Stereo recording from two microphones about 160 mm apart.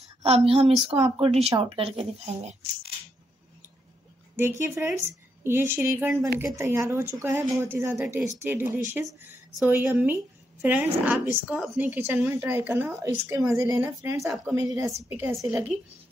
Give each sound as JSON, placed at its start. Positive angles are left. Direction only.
{"t": 0.2, "sound": "a woman's voice", "side_deg": -40}
{"t": 4.4, "sound": "a woman's voice", "side_deg": -15}
{"t": 9.0, "sound": "a woman's voice", "side_deg": 0}